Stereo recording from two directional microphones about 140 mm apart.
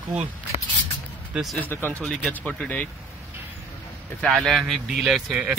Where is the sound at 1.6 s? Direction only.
15° left (ahead or behind).